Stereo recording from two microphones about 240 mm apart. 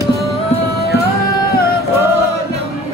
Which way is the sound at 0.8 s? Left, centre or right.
Left.